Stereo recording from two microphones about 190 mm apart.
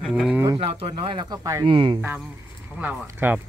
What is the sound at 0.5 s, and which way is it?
Speech, 30° right (ahead or behind).